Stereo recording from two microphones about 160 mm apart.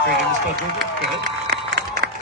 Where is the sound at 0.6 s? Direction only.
90° right.